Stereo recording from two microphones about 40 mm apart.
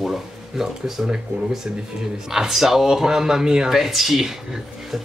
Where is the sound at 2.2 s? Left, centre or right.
Centre.